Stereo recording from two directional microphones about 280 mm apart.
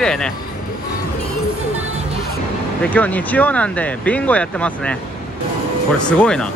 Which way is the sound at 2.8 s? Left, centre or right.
Centre.